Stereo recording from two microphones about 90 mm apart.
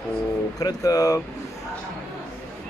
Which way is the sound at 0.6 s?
45° left (ahead or behind).